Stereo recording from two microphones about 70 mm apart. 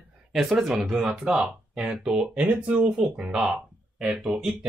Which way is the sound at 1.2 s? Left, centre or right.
Centre.